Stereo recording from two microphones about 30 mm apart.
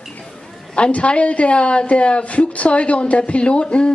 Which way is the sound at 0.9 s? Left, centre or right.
Left.